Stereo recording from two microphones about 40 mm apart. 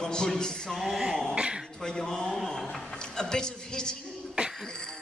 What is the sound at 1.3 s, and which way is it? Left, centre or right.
Speech, right.